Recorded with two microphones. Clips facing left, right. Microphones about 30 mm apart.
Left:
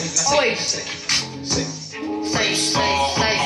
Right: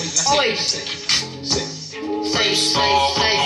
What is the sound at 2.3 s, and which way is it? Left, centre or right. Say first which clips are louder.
Music: right 2 dB; right.